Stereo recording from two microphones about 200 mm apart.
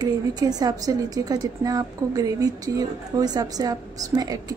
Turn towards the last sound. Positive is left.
turn(degrees=-20)  # may be behind; listen again after turning